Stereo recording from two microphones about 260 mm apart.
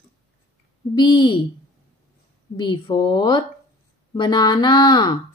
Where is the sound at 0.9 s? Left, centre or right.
Centre.